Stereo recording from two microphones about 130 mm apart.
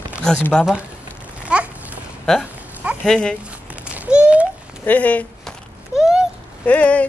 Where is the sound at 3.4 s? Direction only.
10° right (ahead or behind).